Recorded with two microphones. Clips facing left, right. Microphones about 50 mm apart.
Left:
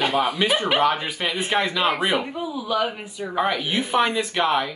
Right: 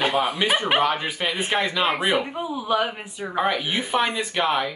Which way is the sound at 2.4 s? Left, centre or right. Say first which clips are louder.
Right 1 dB; right.